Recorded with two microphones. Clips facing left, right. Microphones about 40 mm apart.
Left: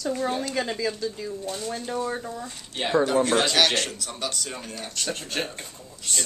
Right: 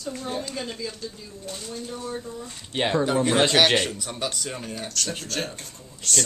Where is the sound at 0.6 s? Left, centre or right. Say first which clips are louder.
Left 6 dB; left.